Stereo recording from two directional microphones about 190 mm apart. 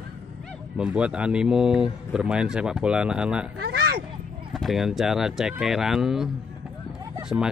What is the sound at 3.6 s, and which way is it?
Cat, 55° right (ahead or behind).